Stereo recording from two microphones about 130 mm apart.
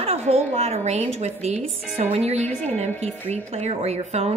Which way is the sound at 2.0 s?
50° right (ahead or behind).